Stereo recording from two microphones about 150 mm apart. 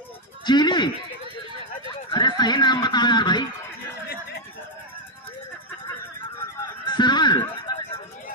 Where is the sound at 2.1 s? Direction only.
30° left (ahead or behind).